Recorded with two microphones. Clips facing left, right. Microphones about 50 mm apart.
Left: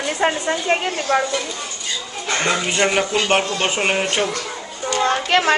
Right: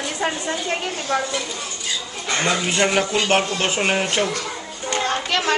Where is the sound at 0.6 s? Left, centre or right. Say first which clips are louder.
Left 5 dB; left.